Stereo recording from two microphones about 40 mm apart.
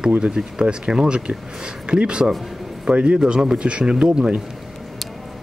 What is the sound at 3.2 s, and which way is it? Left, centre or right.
Speech, centre.